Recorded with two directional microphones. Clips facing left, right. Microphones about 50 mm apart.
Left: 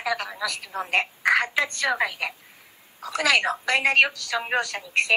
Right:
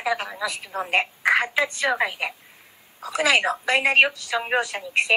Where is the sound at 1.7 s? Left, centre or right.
Centre.